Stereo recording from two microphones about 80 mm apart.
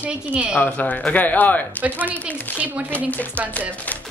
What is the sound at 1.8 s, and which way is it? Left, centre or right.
Speech, right.